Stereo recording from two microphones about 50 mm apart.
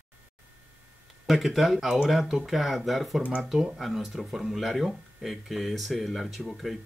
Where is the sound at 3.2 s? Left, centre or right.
Centre.